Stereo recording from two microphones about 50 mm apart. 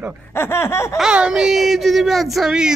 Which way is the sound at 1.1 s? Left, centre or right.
Right.